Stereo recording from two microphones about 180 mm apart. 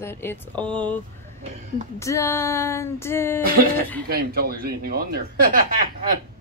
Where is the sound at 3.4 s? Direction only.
55° right (ahead or behind).